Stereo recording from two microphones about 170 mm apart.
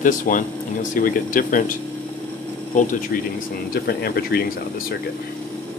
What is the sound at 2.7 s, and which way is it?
Speech, 50° left (ahead or behind).